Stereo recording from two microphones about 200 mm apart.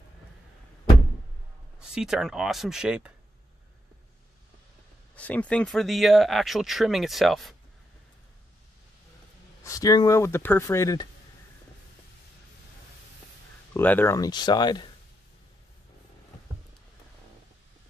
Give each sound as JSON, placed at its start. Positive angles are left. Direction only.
{"t": 2.0, "sound": "speech", "side_deg": 0}
{"t": 5.1, "sound": "speech", "side_deg": 5}
{"t": 9.6, "sound": "speech", "side_deg": 15}
{"t": 13.7, "sound": "speech", "side_deg": 10}